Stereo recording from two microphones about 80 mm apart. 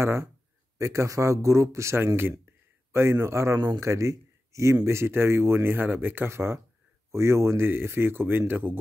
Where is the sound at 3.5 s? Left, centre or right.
Right.